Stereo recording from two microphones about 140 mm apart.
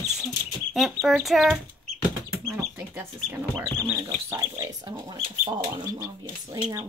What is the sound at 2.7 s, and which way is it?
Chicken, 15° right (ahead or behind).